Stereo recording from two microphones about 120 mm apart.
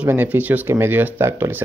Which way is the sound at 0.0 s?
15° right (ahead or behind).